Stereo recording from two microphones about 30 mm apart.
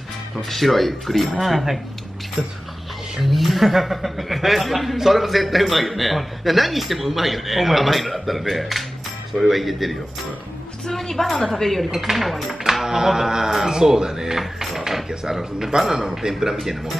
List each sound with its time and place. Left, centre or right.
0.4 s a man's voice: centre
3.2 s a man's voice: centre
10.9 s a woman's voice: centre
11.9 s a man's voice: centre
12.8 s speech: centre
14.4 s mechanisms: centre
15.3 s speech: centre